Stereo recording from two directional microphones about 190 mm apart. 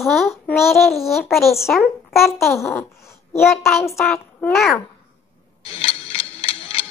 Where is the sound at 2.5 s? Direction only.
15° left (ahead or behind).